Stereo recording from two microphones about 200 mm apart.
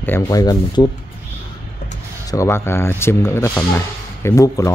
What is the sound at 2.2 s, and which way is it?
Speech, 15° left (ahead or behind).